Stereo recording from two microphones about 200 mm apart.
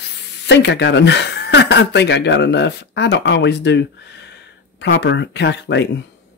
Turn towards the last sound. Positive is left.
turn(degrees=60)  # may be behind; listen again after turning